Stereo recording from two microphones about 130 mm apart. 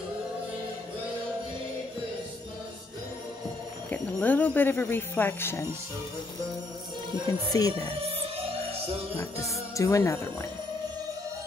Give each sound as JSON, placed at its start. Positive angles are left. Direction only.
{"t": 3.9, "sound": "speech", "side_deg": 10}
{"t": 7.2, "sound": "music", "side_deg": 25}
{"t": 9.1, "sound": "music", "side_deg": 25}